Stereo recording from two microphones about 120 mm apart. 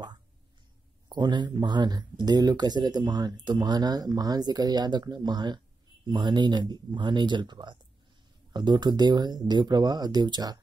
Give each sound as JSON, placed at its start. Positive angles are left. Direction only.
{"t": 1.0, "sound": "speech", "side_deg": -40}